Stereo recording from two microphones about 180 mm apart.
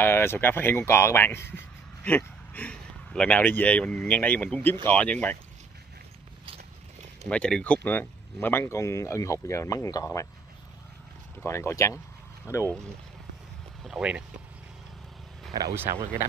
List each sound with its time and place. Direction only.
0.0 s speech: 15° left (ahead or behind)
7.2 s speech: 5° left (ahead or behind)
11.4 s speech: 15° left (ahead or behind)
13.8 s speech: 5° right (ahead or behind)
15.5 s speech: 15° right (ahead or behind)